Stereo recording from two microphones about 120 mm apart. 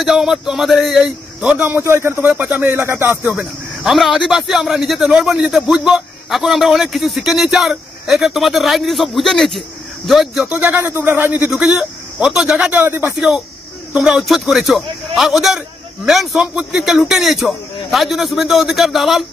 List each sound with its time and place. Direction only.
0.0 s a man's voice: centre (ahead or behind); by 3.3 s 20° right (ahead or behind)
3.3 s speech: 5° right (ahead or behind)
10.5 s a man's voice: 15° right (ahead or behind)
12.8 s speech: 20° right (ahead or behind)
13.9 s speech: 5° right (ahead or behind)